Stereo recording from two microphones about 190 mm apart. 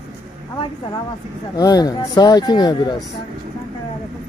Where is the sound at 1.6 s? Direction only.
20° left (ahead or behind).